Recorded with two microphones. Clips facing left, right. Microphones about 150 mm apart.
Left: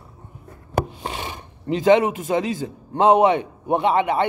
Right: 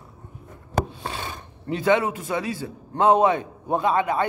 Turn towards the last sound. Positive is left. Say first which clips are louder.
# left 3 dB
turn(degrees=20)  # may be behind; listen again after turning